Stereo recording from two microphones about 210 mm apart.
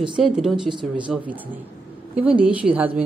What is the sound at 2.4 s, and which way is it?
Speech, 5° right (ahead or behind).